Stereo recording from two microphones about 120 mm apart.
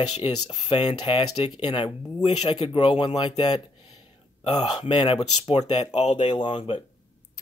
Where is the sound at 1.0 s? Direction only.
50° left (ahead or behind).